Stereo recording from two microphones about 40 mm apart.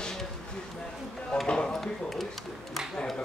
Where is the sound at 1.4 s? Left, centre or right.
Left.